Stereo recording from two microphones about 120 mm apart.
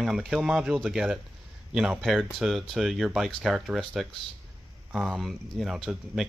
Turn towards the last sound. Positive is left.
turn(degrees=0)  # may be behind; listen again after turning